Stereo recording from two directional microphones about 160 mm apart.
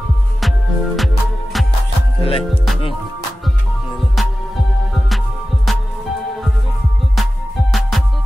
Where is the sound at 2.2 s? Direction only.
35° left (ahead or behind).